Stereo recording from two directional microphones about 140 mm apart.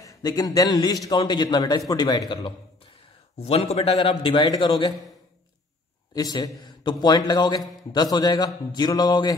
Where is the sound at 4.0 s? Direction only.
35° left (ahead or behind).